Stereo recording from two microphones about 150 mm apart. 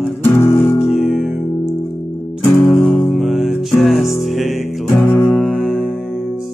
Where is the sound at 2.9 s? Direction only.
Centre (ahead or behind).